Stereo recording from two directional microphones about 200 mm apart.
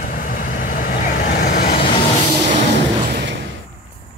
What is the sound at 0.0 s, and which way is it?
Vehicle, 45° left (ahead or behind).